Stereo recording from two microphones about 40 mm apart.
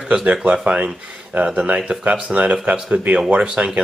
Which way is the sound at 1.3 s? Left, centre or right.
Right.